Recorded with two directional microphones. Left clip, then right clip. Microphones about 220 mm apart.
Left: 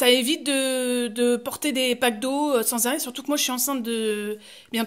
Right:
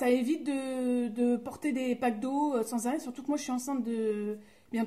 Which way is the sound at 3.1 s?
20° left (ahead or behind).